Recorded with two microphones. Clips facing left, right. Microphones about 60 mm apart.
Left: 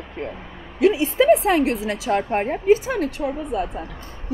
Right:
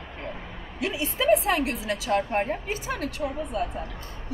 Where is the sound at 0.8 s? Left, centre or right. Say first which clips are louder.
Left 11 dB; left.